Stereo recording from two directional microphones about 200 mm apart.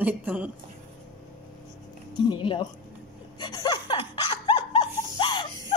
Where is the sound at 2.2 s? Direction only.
25° left (ahead or behind).